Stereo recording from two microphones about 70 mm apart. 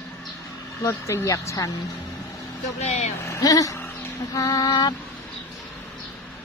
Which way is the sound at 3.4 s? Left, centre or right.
Left.